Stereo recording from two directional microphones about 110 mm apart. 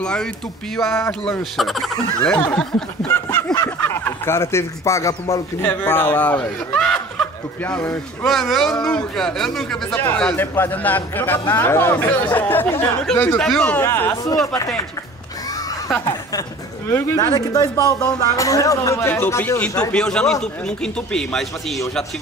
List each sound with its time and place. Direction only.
0.0 s a man's voice: 5° left (ahead or behind)
1.6 s a man's voice: centre (ahead or behind)
3.1 s snicker: 20° left (ahead or behind)
3.5 s a sound: 25° left (ahead or behind)
5.3 s a man's voice: 15° left (ahead or behind)
16.9 s speech: 30° left (ahead or behind)
19.8 s a man's voice: 5° left (ahead or behind)